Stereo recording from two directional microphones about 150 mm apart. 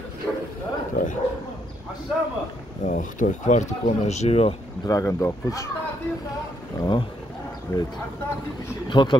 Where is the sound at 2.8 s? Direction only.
55° left (ahead or behind).